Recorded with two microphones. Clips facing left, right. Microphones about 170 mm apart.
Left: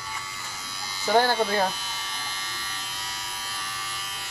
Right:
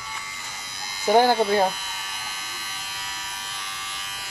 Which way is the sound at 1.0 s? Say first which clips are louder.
Right 4 dB; 15° right (ahead or behind).